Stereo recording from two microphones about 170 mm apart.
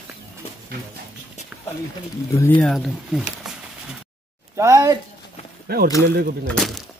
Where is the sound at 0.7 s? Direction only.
65° right (ahead or behind).